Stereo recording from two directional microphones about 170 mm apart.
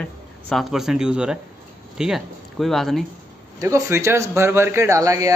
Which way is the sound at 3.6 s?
15° right (ahead or behind).